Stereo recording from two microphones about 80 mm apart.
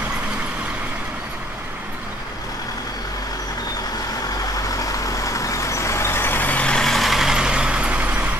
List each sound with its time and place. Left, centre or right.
4.6 s vehicle: left; by 8.3 s centre